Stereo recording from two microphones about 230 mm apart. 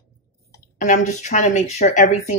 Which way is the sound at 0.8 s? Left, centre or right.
Left.